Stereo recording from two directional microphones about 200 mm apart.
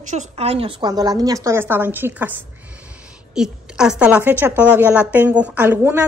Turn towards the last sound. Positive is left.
turn(degrees=-10)  # may be behind; listen again after turning